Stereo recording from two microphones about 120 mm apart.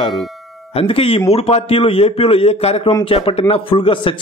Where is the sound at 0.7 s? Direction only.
50° left (ahead or behind).